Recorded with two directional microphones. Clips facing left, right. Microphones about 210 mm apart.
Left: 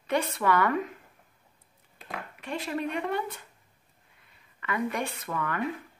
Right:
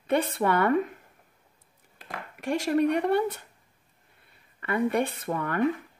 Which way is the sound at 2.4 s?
45° right (ahead or behind).